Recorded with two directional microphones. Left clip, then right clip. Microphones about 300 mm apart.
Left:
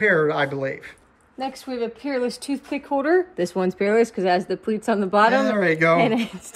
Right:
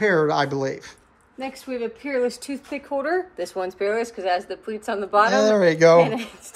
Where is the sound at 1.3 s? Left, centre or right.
Centre.